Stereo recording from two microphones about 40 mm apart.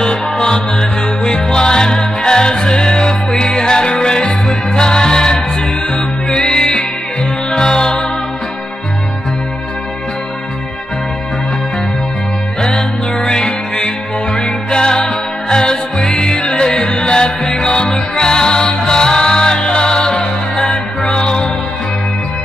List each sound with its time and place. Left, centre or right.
0.0 s music: centre
6.3 s music: left
7.7 s music: centre
13.3 s music: centre